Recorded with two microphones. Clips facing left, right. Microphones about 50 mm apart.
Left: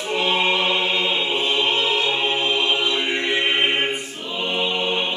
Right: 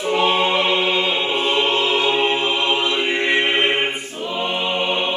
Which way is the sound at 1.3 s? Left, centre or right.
Right.